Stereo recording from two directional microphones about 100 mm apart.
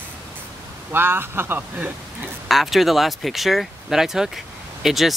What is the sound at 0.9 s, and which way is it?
A man's voice, 20° right (ahead or behind).